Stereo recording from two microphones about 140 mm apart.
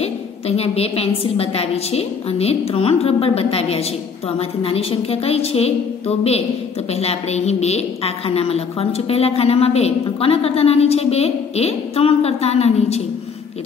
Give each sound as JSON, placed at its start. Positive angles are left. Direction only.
{"t": 0.0, "sound": "a woman's voice", "side_deg": 45}